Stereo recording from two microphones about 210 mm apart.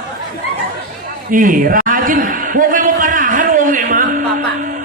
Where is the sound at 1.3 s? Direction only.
40° right (ahead or behind).